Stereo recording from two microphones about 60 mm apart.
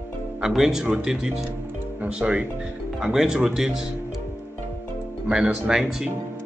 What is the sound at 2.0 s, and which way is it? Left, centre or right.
Speech, right.